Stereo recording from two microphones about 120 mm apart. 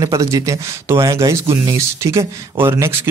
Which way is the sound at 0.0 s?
30° right (ahead or behind).